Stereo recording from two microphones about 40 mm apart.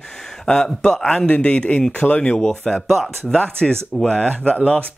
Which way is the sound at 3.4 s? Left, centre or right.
Centre.